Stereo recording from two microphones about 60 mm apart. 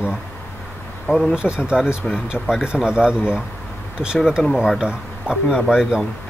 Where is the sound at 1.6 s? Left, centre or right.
Centre.